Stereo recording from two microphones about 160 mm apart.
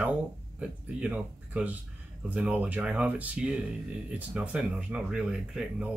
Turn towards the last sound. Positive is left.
turn(degrees=-5)  # may be behind; listen again after turning